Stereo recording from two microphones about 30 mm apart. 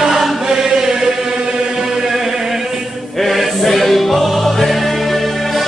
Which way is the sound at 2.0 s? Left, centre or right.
Centre.